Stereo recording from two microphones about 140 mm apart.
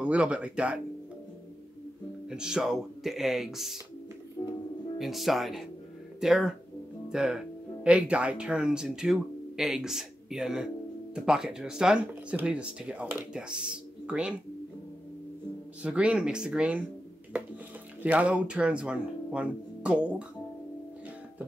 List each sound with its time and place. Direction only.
0.0 s speech: 10° right (ahead or behind)
2.2 s speech: 5° right (ahead or behind)
4.4 s music: 20° left (ahead or behind)
4.9 s speech: centre (ahead or behind)
15.8 s speech: 10° right (ahead or behind)
18.0 s speech: 10° right (ahead or behind)